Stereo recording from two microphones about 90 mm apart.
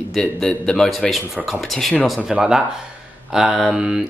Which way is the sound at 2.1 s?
10° right (ahead or behind).